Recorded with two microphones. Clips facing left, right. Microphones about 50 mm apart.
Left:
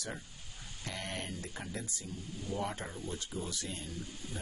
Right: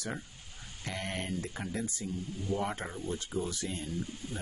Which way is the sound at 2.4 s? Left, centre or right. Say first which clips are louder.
Right 3 dB; right.